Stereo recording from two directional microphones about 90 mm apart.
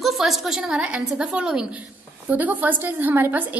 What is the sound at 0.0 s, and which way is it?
A woman's voice, centre (ahead or behind).